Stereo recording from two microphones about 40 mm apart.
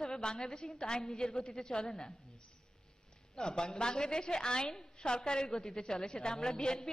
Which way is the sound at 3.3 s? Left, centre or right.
Centre.